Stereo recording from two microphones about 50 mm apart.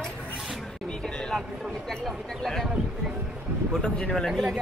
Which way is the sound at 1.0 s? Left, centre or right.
Centre.